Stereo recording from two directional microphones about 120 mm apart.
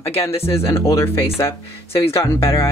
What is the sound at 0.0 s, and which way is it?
Speech, 20° left (ahead or behind).